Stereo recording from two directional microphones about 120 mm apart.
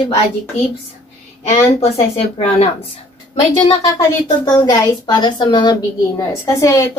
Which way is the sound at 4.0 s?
30° left (ahead or behind).